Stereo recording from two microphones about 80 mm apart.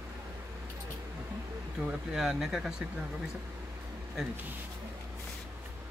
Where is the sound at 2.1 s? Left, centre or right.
Centre.